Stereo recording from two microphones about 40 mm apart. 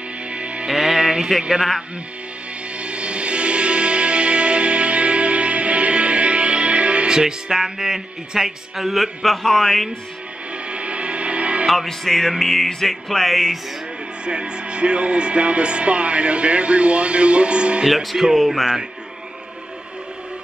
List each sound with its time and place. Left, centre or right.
0.3 s music: right
0.7 s music: centre
2.8 s music: right
7.1 s speech: centre
10.7 s music: right
11.6 s music: centre
14.2 s speech: right
17.8 s music: centre